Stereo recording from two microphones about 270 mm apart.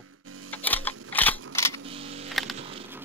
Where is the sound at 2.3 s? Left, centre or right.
Centre.